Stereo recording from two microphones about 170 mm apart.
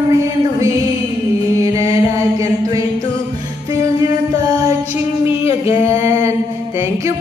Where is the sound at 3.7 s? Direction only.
20° right (ahead or behind).